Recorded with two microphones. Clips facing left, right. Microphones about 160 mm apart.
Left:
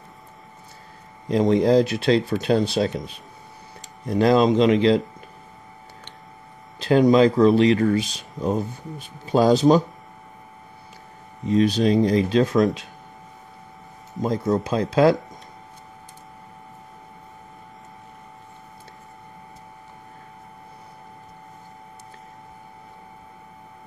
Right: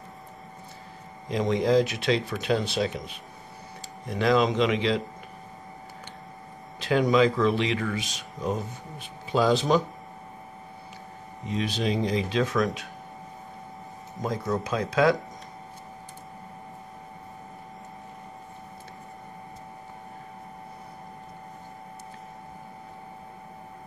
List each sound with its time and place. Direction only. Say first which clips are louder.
1.3 s speech: left 5 dB; 35° left (ahead or behind)
6.8 s speech: left 6 dB; 35° left (ahead or behind)
11.4 s speech: left 9 dB; 40° left (ahead or behind)
14.4 s speech: left 5 dB; 30° left (ahead or behind)